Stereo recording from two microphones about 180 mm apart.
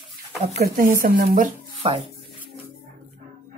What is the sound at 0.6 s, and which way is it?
Speech, 50° right (ahead or behind).